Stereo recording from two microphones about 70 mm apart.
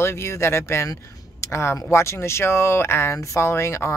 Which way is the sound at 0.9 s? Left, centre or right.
Left.